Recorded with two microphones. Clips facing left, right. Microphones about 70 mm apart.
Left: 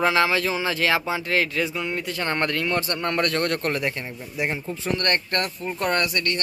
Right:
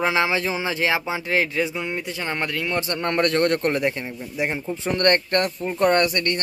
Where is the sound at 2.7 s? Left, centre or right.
Right.